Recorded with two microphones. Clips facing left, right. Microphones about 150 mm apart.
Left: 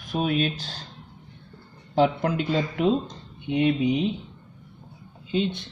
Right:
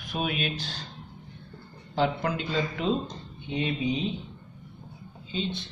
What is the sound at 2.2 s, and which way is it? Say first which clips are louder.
Speech: left 4 dB; 55° left (ahead or behind).